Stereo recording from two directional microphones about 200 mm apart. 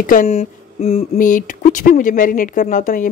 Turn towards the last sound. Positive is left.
turn(degrees=40)  # may be behind; listen again after turning